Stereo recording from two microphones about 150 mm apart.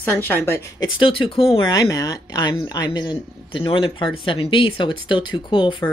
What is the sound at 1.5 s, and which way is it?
Speech, 25° left (ahead or behind).